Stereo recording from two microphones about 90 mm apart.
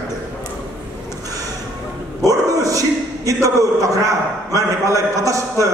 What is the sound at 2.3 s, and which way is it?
A man's voice, 40° right (ahead or behind).